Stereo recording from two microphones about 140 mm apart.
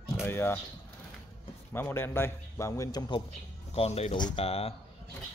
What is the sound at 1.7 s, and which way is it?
Speech, 15° left (ahead or behind).